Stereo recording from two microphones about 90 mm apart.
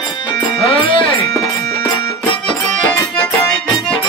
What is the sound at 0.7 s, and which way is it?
Music, 75° left (ahead or behind).